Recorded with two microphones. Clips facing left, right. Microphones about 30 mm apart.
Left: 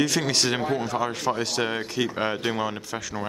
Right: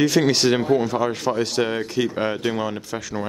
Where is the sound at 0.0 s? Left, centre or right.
Centre.